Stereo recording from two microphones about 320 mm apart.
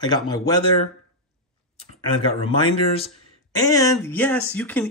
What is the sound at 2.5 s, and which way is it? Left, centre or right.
A man's voice, centre.